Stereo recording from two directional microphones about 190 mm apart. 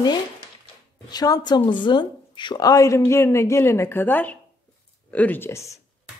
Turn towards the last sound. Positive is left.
turn(degrees=15)  # may be behind; listen again after turning